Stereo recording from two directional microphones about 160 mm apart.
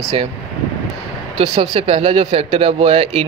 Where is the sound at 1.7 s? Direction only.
40° right (ahead or behind).